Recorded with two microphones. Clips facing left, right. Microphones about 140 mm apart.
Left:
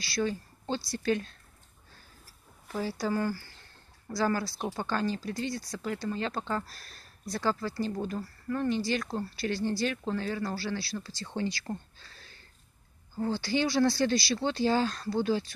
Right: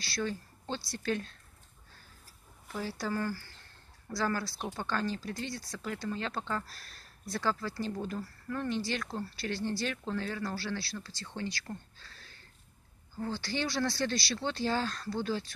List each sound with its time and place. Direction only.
0.0 s speech: 5° left (ahead or behind)
2.8 s speech: 5° left (ahead or behind)
11.2 s speech: 30° left (ahead or behind)
13.2 s speech: 10° left (ahead or behind)